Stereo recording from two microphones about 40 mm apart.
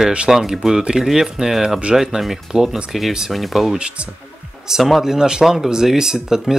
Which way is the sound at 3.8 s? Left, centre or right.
Right.